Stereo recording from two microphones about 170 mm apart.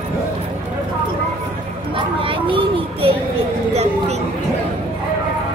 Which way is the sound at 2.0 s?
30° right (ahead or behind).